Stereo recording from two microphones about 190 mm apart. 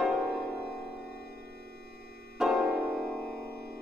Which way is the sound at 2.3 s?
Centre (ahead or behind).